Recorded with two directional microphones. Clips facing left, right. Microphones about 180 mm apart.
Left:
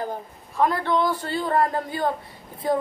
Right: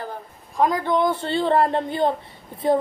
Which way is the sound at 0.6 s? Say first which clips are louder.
Right 2 dB; 15° right (ahead or behind).